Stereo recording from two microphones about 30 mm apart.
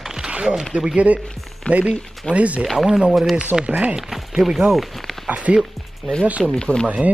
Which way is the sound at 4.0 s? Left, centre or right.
Centre.